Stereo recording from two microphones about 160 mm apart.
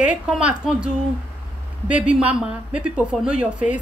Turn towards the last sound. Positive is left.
turn(degrees=-5)  # may be behind; listen again after turning